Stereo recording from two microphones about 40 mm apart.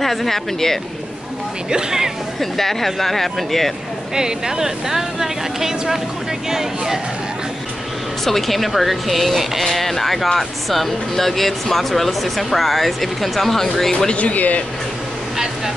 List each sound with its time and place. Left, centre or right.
0.0 s speech: centre
1.7 s speech: centre
2.5 s speech: centre
4.1 s speech: centre
8.3 s speech: centre
14.1 s speech: left
15.3 s a sound: centre